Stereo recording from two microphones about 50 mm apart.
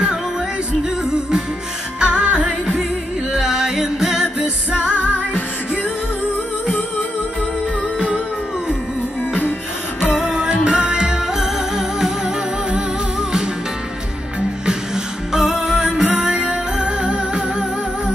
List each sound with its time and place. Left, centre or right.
2.0 s music: right
3.3 s music: centre
10.1 s music: centre
11.3 s music: centre
15.3 s music: centre
16.2 s music: right